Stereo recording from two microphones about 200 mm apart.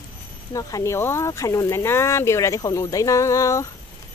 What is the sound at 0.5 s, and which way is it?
Speech, 15° left (ahead or behind).